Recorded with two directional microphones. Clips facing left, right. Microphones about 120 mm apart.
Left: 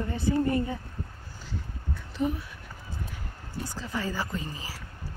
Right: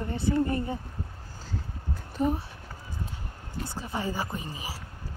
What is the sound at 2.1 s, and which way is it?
Speech, 40° right (ahead or behind).